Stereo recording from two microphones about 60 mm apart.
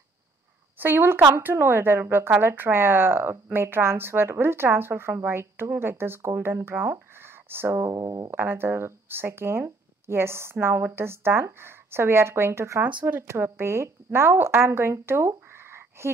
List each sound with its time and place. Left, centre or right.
0.7 s speech: right
7.9 s speech: right
8.3 s a woman's voice: right